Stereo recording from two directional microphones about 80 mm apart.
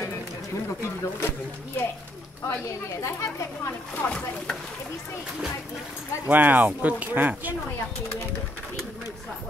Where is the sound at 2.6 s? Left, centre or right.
Left.